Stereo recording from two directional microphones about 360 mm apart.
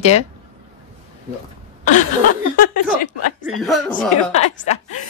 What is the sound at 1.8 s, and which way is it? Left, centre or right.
Speech, left.